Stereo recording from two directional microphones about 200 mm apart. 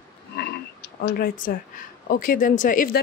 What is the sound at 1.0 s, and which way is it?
Speech, 45° left (ahead or behind).